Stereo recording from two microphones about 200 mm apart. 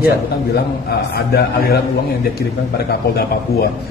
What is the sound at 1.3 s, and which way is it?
Speech, 50° left (ahead or behind).